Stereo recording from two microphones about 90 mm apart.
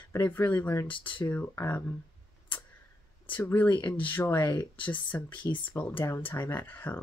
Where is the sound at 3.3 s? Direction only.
20° left (ahead or behind).